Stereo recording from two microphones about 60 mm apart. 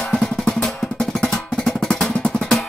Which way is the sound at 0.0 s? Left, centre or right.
Centre.